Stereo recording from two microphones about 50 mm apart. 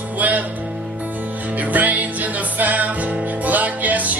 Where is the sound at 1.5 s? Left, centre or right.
Right.